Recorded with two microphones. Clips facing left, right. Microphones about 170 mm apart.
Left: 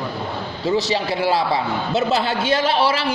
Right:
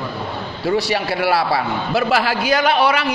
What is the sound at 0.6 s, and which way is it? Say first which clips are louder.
A man's voice: right 1 dB; 20° left (ahead or behind).